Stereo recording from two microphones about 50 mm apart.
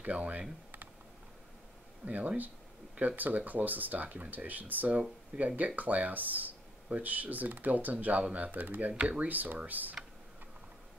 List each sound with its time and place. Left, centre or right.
0.0 s speech: right
2.0 s speech: right
5.3 s speech: right
8.9 s speech: centre
9.3 s speech: right